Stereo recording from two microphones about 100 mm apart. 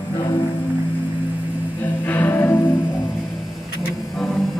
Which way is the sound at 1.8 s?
15° left (ahead or behind).